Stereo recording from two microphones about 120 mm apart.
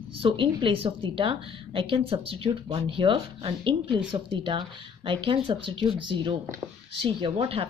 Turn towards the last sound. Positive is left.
turn(degrees=-55)  # may be behind; listen again after turning